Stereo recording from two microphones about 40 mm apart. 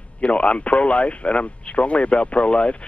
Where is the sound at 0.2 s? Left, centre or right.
Left.